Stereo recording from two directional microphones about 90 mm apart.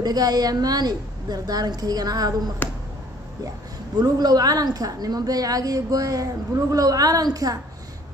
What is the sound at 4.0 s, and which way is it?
A man's voice, 45° right (ahead or behind).